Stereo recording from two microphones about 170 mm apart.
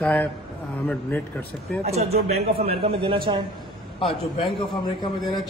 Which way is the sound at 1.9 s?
40° right (ahead or behind).